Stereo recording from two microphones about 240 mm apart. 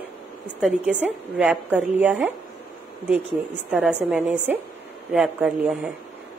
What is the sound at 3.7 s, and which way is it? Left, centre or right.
A woman's voice, centre.